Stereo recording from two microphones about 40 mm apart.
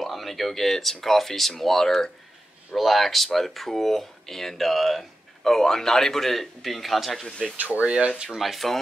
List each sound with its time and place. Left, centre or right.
0.0 s a man's voice: centre
5.4 s a man's voice: centre
7.2 s a man's voice: centre
7.5 s speech: right
7.8 s speech: right
8.3 s speech: centre